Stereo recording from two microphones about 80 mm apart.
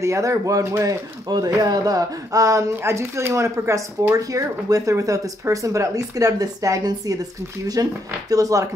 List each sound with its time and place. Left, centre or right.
0.0 s speech: right
1.3 s speech: right